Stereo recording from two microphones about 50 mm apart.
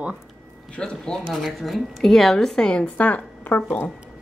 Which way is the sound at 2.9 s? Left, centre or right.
Left.